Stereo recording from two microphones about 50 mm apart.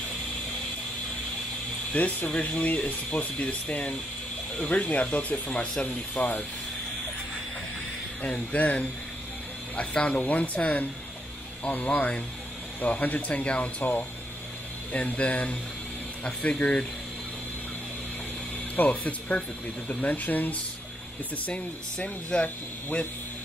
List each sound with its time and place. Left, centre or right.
1.9 s speech: left
5.9 s speech: left
8.2 s speech: left
19.0 s speech: left
21.9 s speech: centre